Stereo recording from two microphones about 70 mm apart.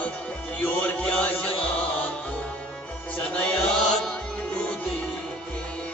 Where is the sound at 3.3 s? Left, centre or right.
Centre.